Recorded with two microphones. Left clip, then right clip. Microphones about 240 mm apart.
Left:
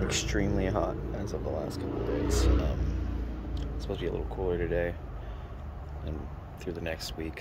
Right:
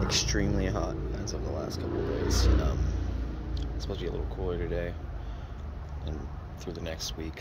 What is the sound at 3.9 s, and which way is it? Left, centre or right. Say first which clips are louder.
Speech: left 3 dB; centre.